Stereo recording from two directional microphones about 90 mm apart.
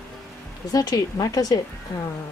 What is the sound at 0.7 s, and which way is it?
Speech, 45° left (ahead or behind).